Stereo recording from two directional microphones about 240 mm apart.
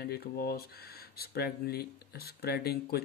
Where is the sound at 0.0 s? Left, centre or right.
Left.